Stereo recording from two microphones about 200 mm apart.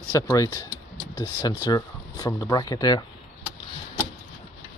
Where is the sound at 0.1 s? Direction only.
15° left (ahead or behind).